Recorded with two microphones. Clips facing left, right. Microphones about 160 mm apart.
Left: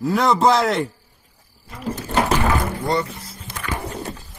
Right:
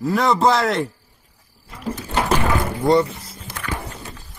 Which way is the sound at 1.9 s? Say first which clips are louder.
Left 1 dB; 10° right (ahead or behind).